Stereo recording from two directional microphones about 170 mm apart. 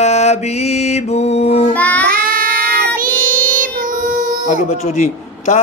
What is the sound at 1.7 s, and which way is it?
Child singing, 10° left (ahead or behind).